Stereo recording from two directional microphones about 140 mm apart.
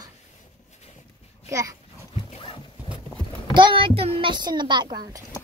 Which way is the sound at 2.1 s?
40° left (ahead or behind).